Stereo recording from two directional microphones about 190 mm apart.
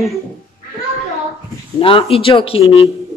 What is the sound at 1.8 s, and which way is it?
Speech, 30° left (ahead or behind).